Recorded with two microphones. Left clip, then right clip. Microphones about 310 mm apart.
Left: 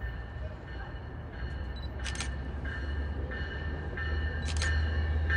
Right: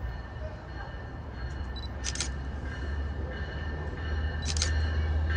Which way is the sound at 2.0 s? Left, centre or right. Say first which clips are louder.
Right 3 dB; left.